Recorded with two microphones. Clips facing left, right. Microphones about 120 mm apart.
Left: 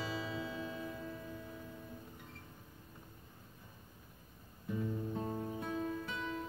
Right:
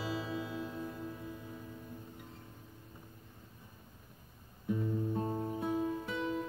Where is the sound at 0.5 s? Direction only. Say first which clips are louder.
Right 2 dB; 5° right (ahead or behind).